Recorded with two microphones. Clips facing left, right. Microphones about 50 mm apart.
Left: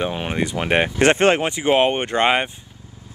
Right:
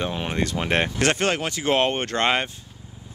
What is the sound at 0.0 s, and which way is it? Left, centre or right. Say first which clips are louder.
Speech: left 3 dB; centre.